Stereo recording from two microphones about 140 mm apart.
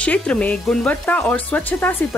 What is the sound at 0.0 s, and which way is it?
Speech, 10° left (ahead or behind).